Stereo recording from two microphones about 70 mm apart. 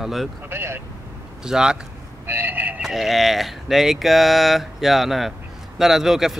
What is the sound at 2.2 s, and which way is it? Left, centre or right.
Speech, right.